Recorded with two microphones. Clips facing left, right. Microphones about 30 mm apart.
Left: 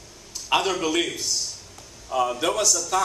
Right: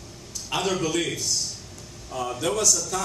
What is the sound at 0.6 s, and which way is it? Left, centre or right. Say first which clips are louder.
Speech: right 3 dB; left.